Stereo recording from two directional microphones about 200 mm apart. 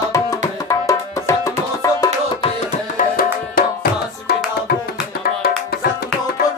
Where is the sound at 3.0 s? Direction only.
45° left (ahead or behind).